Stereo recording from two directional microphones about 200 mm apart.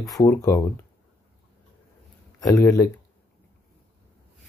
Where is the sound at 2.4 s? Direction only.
15° left (ahead or behind).